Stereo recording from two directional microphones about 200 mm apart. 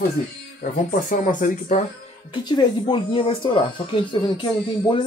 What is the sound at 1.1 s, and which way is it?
Speech, 40° left (ahead or behind).